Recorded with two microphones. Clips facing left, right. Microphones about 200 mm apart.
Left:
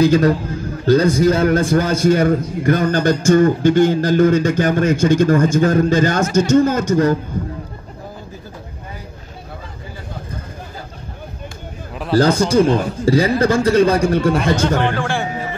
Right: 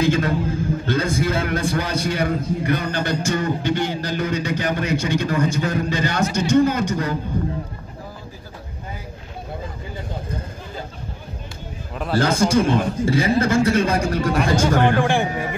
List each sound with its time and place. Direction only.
0.0 s a man's voice: 40° left (ahead or behind)
12.2 s a man's voice: 35° left (ahead or behind)
14.8 s a man's voice: 15° right (ahead or behind)